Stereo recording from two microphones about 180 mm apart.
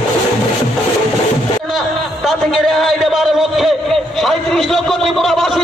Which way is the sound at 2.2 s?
Centre (ahead or behind).